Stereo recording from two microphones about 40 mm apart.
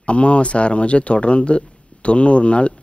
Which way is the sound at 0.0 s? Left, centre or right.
Left.